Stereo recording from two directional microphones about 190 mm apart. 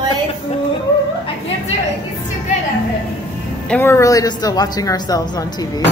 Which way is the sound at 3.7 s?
10° left (ahead or behind).